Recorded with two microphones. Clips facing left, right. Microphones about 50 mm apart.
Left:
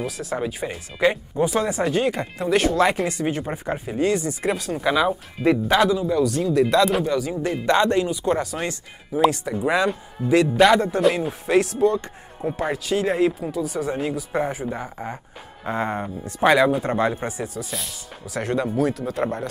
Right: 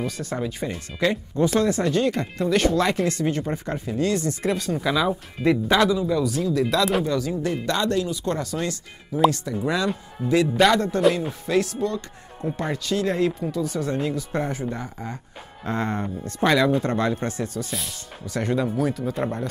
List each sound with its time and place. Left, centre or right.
0.0 s speech: centre
4.8 s speech: centre
6.4 s speech: centre
7.1 s speech: centre
7.6 s speech: left
9.8 s speech: centre
11.5 s speech: left
12.5 s speech: centre